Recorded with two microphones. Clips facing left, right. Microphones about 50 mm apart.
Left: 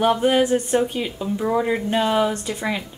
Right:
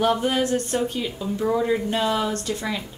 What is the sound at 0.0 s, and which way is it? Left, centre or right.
Speech, centre.